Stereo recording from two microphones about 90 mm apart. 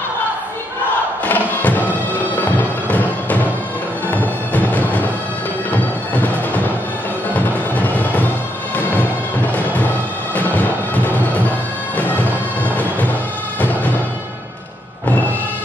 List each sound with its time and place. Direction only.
1.2 s music: 20° left (ahead or behind)
10.3 s music: 20° left (ahead or behind)
12.0 s bagpipes: 20° left (ahead or behind)
13.6 s music: 15° left (ahead or behind)